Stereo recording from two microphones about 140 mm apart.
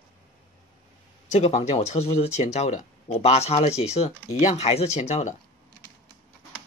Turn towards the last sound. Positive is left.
turn(degrees=55)  # may be behind; listen again after turning